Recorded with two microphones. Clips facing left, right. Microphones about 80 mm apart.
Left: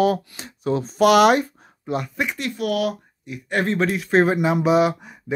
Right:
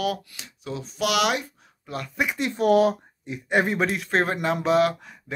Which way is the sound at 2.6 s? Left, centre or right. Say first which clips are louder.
Right 5 dB; right.